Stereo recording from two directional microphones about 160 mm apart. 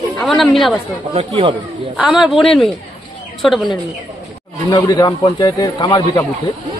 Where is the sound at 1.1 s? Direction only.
35° right (ahead or behind).